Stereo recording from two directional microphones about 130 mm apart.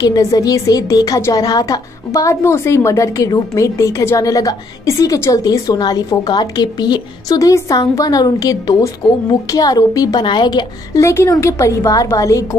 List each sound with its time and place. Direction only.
0.0 s a woman's voice: 25° left (ahead or behind)